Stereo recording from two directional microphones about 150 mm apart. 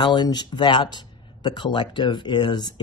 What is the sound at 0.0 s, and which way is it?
Speech, 30° left (ahead or behind).